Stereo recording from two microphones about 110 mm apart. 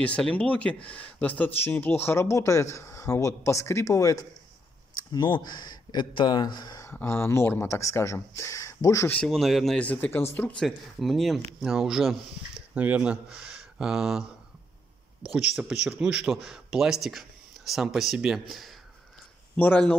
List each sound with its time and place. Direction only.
0.0 s speech: 10° left (ahead or behind); by 6.8 s 40° left (ahead or behind)
6.8 s speech: 20° left (ahead or behind)
9.1 s speech: 5° left (ahead or behind)
10.6 s speech: centre (ahead or behind)
15.3 s a man's voice: 10° right (ahead or behind)
19.5 s speech: 15° left (ahead or behind)